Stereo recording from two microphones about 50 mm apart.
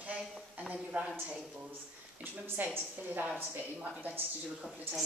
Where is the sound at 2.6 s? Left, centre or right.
Right.